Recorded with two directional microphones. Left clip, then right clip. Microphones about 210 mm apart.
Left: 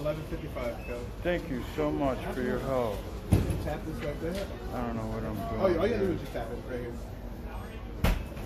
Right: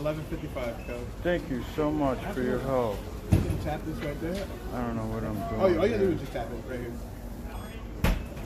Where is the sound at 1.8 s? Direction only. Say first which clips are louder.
Right 2 dB; 15° right (ahead or behind).